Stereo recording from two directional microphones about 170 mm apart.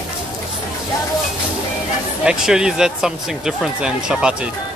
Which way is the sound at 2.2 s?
5° right (ahead or behind).